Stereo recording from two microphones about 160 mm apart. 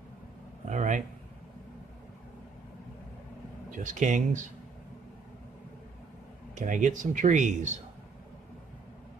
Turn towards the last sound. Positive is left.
turn(degrees=-50)  # may be behind; listen again after turning